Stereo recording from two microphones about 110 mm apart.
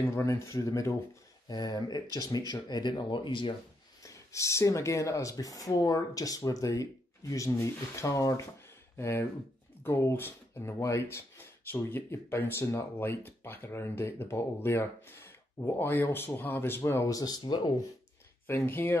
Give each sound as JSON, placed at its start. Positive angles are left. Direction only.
{"t": 0.0, "sound": "speech", "side_deg": 25}
{"t": 1.5, "sound": "speech", "side_deg": 40}
{"t": 4.0, "sound": "speech", "side_deg": 30}
{"t": 18.5, "sound": "speech", "side_deg": 20}